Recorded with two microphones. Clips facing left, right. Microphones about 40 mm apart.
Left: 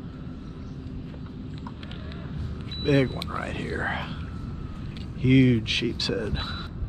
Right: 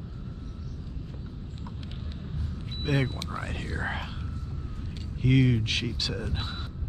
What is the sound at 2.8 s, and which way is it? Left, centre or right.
Speech, centre.